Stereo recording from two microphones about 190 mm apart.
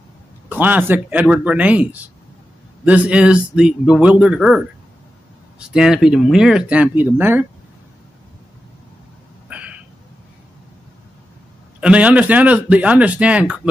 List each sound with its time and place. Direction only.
0.5 s a man's voice: 10° right (ahead or behind)
9.5 s a sound: 5° right (ahead or behind)
11.8 s a man's voice: 5° right (ahead or behind)